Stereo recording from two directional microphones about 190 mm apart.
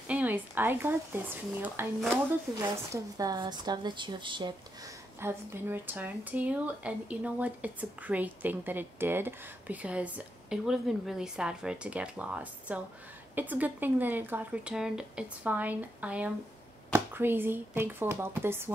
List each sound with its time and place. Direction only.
0.1 s speech: 10° right (ahead or behind); by 4.6 s 25° right (ahead or behind)
5.2 s speech: 15° right (ahead or behind)